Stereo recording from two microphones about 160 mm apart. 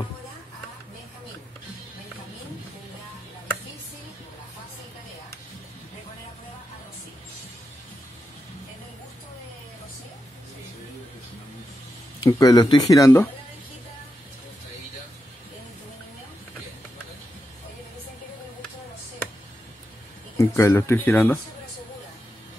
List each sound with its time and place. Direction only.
12.2 s speech: 20° left (ahead or behind)
20.3 s speech: 20° left (ahead or behind)